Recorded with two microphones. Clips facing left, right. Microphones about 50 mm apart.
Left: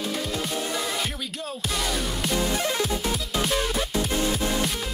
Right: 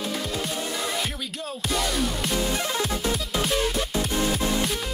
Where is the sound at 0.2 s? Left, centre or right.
Centre.